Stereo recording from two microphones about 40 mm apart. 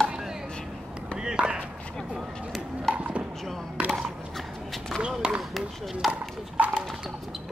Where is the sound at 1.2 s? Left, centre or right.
Right.